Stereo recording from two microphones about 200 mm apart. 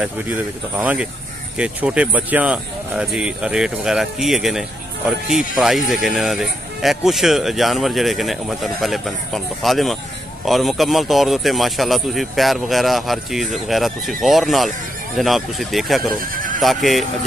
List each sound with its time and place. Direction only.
0.0 s speech: 10° right (ahead or behind)
16.3 s neigh: 40° right (ahead or behind)
16.6 s speech: centre (ahead or behind)